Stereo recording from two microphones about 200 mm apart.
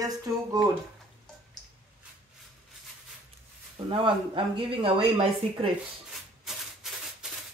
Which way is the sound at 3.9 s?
25° right (ahead or behind).